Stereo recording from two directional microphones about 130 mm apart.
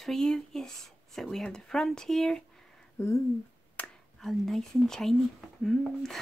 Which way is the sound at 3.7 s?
5° left (ahead or behind).